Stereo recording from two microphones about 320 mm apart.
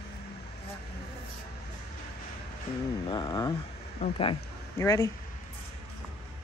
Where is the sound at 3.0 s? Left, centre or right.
Centre.